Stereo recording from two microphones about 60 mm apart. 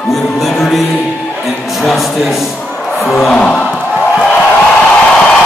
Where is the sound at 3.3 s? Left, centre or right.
Centre.